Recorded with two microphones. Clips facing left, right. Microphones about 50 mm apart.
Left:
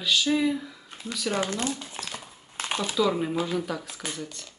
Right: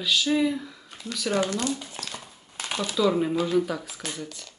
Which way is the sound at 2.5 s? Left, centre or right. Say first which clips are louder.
Left 1 dB; left.